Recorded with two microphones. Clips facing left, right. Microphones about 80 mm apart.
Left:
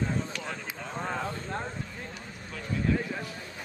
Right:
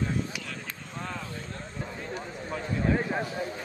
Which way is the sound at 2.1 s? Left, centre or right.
Right.